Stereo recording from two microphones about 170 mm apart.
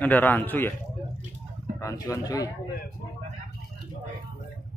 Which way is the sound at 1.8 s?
20° left (ahead or behind).